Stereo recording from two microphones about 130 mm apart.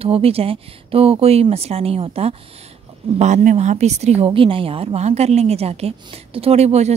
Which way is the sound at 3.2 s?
60° right (ahead or behind).